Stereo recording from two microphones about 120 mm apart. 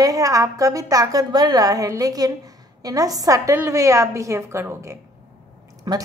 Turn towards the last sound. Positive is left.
turn(degrees=-35)  # may be behind; listen again after turning